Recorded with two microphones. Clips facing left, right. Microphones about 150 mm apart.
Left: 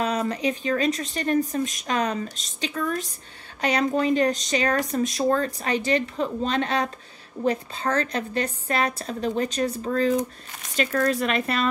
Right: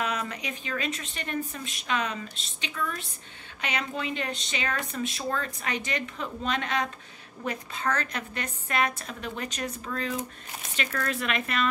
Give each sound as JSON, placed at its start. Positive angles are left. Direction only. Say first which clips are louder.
{"t": 0.0, "sound": "speech", "louder": "left 7 dB", "side_deg": 35}